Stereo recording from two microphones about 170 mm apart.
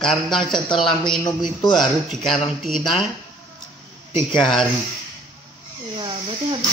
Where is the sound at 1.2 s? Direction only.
25° left (ahead or behind).